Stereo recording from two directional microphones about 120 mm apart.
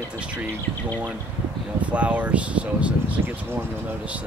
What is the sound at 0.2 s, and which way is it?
Speech, 10° right (ahead or behind).